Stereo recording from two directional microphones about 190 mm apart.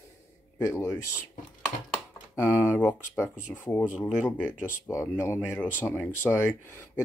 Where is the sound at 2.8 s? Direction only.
10° left (ahead or behind).